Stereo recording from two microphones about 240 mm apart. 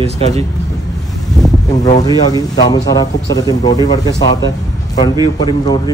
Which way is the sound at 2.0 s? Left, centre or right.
Centre.